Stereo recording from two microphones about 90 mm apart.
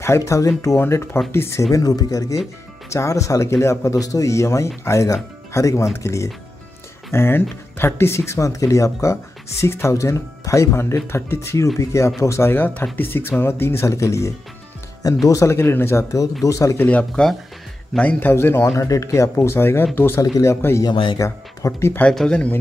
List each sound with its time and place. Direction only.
0.0 s speech: 35° left (ahead or behind)
16.7 s a man's voice: 15° left (ahead or behind)
17.1 s speech: 5° left (ahead or behind)
17.9 s a man's voice: 15° left (ahead or behind)
18.3 s speech: 30° left (ahead or behind)
20.9 s speech: 65° left (ahead or behind)
21.2 s speech: 35° left (ahead or behind)
22.1 s a man's voice: 5° left (ahead or behind)